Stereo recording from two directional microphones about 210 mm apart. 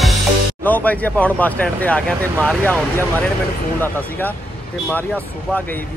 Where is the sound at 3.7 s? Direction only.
10° left (ahead or behind).